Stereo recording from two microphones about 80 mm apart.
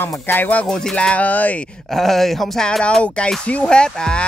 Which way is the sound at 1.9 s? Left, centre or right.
Centre.